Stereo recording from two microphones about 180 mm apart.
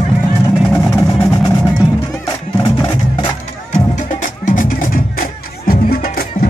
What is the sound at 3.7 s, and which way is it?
Music, 45° left (ahead or behind).